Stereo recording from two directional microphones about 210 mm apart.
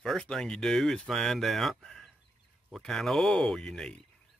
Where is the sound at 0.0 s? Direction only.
Centre (ahead or behind).